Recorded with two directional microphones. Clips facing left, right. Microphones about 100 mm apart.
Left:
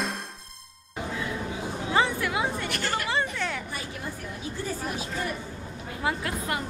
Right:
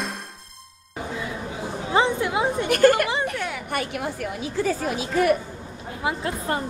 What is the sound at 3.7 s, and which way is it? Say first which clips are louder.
A woman's voice: right 8 dB; 70° right (ahead or behind).